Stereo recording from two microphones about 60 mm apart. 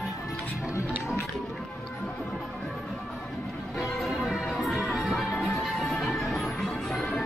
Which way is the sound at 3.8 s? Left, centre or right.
Centre.